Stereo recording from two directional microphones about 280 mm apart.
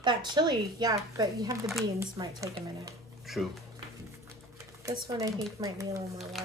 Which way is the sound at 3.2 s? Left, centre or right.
Centre.